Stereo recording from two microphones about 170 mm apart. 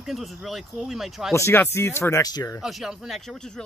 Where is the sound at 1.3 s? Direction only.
15° left (ahead or behind).